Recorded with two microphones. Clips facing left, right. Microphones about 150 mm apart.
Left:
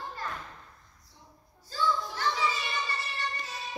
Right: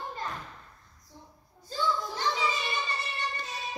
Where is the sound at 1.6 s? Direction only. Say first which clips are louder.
Even; 20° right (ahead or behind).